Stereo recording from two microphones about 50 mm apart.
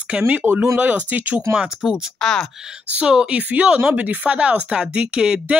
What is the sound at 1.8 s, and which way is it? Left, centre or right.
Speech, centre.